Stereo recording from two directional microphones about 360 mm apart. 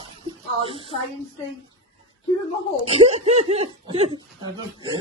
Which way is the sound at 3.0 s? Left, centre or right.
Centre.